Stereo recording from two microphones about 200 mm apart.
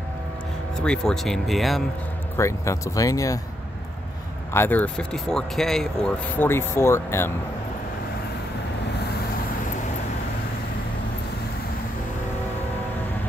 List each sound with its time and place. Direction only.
0.7 s speech: 5° left (ahead or behind)
2.3 s speech: 15° left (ahead or behind)
4.6 s speech: 10° left (ahead or behind)